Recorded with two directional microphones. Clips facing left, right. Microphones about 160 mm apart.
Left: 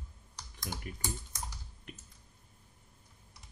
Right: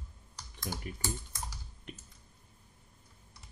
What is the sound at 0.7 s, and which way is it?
Speech, 5° right (ahead or behind).